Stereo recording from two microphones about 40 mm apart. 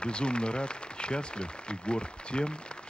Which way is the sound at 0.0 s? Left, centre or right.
Left.